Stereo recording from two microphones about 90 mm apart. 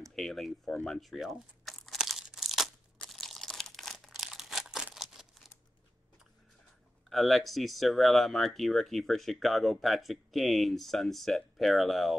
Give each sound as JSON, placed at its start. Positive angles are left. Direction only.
{"t": 0.1, "sound": "crumpling", "side_deg": 5}
{"t": 7.1, "sound": "speech", "side_deg": 0}